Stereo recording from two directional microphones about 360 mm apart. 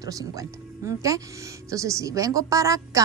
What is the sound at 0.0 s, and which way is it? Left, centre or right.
A woman's voice, centre.